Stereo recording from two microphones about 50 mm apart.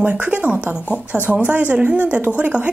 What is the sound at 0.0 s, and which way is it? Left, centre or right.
Speech, right.